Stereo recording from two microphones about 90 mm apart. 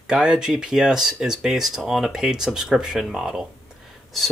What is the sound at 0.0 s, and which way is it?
Speech, 5° right (ahead or behind).